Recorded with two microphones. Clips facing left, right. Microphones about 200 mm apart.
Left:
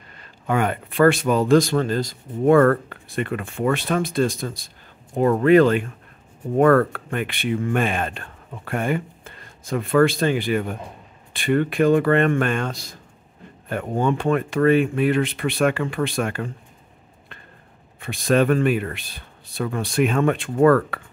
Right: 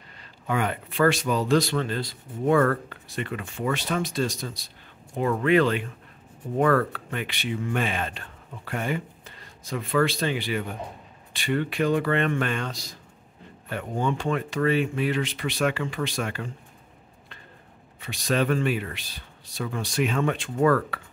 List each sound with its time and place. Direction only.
0.2 s speech: 50° left (ahead or behind)
18.0 s speech: 50° left (ahead or behind)